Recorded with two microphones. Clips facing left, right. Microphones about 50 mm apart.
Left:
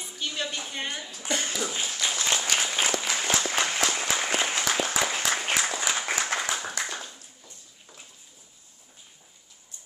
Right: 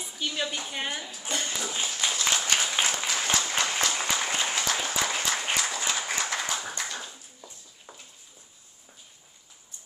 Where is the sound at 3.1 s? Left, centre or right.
Centre.